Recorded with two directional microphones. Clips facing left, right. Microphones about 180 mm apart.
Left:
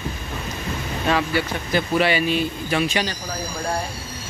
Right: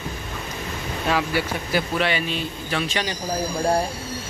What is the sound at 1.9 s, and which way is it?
Speech, 5° left (ahead or behind).